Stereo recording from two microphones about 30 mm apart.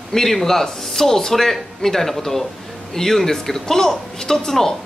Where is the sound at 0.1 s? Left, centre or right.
Centre.